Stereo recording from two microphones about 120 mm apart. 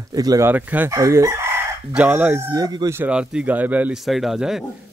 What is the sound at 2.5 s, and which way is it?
Speech, 35° right (ahead or behind).